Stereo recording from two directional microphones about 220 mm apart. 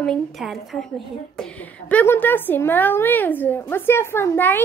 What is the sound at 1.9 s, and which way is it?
A woman's voice, 10° left (ahead or behind).